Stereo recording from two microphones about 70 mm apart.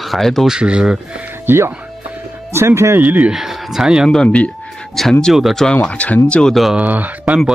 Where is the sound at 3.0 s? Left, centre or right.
Right.